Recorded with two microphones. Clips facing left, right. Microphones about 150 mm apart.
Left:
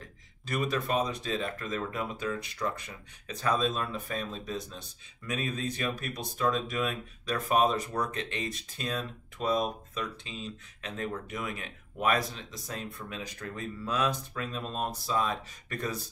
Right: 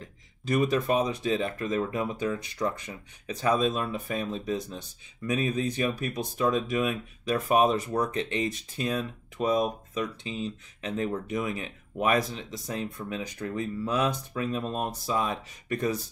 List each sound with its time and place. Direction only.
0.5 s speech: 15° right (ahead or behind)